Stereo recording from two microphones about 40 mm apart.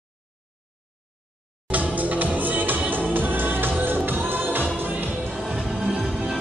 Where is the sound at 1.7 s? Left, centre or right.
Right.